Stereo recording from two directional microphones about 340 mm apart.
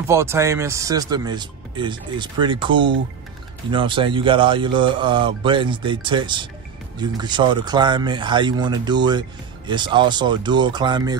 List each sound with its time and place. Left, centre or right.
0.1 s speech: centre